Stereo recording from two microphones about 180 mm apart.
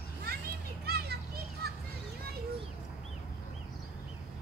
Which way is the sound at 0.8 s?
60° right (ahead or behind).